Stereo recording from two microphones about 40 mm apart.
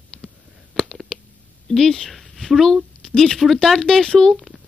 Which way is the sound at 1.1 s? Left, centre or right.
Left.